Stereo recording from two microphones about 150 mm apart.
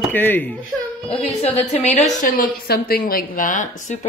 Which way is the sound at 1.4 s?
45° left (ahead or behind).